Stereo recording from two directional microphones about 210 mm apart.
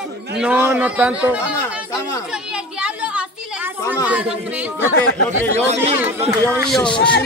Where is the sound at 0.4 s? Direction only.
5° right (ahead or behind).